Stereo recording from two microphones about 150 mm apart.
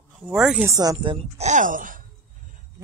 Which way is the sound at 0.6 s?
25° right (ahead or behind).